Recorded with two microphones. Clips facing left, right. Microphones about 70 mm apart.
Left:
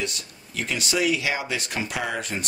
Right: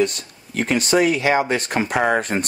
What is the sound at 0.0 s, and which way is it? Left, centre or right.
Speech, right.